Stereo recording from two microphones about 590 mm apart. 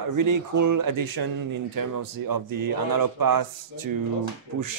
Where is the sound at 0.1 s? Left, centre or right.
Right.